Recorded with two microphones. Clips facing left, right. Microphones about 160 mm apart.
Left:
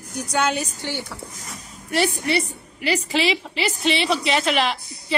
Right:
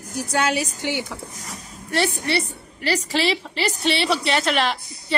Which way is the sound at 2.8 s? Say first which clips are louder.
Even; 35° right (ahead or behind).